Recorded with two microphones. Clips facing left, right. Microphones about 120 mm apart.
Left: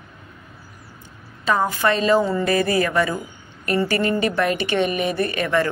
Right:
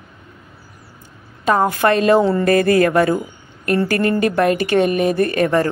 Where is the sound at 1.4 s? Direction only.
50° right (ahead or behind).